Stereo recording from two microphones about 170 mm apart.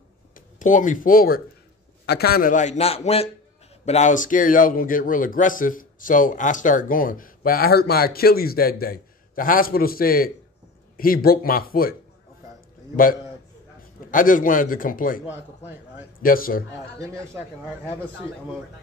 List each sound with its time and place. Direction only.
0.6 s a man's voice: 50° left (ahead or behind)
14.1 s a man's voice: 50° left (ahead or behind)
15.2 s speech: 10° right (ahead or behind)
16.2 s speech: 55° left (ahead or behind)